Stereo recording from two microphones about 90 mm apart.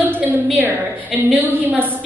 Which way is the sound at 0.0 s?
20° right (ahead or behind).